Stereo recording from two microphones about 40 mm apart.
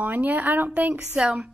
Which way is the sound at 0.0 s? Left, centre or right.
Right.